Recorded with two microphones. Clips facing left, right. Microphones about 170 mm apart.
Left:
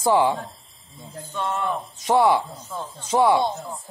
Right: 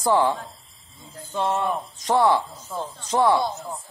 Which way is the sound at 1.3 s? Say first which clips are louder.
Right 3 dB; 30° right (ahead or behind).